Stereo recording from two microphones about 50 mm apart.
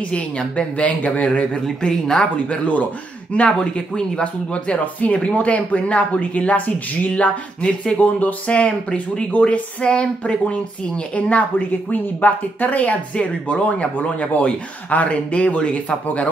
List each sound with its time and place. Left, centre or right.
0.1 s speech: left
7.1 s speech: centre